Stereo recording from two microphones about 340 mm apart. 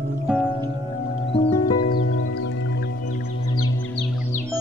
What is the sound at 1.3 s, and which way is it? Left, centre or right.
Music, centre.